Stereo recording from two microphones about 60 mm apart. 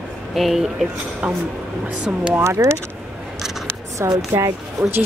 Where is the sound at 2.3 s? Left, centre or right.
Right.